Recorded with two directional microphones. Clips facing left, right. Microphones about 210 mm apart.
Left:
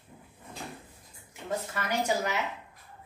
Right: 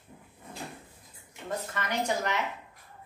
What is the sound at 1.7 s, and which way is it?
Speech, 5° left (ahead or behind).